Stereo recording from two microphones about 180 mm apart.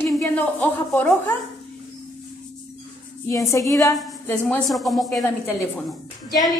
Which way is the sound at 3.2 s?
15° left (ahead or behind).